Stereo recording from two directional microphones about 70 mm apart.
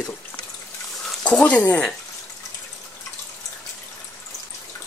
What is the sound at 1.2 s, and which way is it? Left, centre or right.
Speech, centre.